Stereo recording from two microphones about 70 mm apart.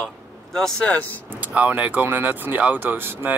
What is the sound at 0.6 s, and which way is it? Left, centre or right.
Speech, centre.